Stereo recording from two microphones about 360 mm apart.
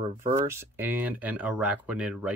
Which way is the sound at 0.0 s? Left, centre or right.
Centre.